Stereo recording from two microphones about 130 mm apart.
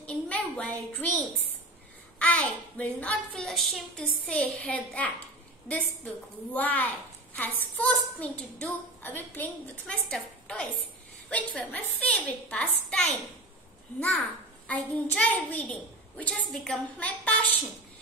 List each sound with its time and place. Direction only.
0.0 s a sound: 10° left (ahead or behind)
2.1 s a woman's voice: 10° left (ahead or behind)
3.4 s a woman's voice: centre (ahead or behind)